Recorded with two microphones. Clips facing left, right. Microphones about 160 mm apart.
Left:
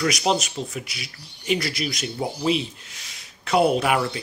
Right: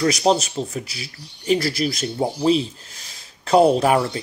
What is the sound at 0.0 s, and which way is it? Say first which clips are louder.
Speech: right 4 dB; 35° right (ahead or behind).